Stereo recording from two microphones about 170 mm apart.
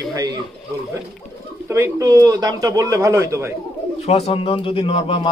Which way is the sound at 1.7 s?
15° right (ahead or behind).